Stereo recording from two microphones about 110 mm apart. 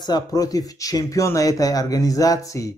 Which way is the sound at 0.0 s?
35° left (ahead or behind).